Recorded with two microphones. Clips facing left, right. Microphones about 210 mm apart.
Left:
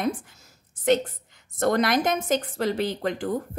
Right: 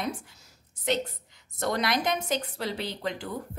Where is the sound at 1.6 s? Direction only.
50° left (ahead or behind).